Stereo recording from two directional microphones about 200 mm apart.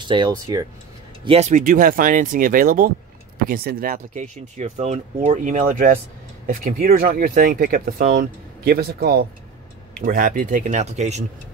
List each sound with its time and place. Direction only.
0.0 s speech: 25° right (ahead or behind)
1.2 s speech: 30° right (ahead or behind)